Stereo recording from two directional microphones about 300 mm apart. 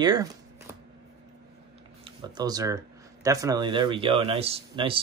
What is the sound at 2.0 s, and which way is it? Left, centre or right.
Speech, centre.